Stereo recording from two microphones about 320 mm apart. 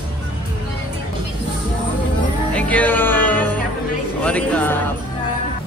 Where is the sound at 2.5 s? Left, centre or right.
Centre.